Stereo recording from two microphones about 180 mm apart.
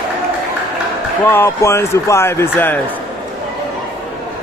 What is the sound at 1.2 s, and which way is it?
A man's voice, 10° left (ahead or behind).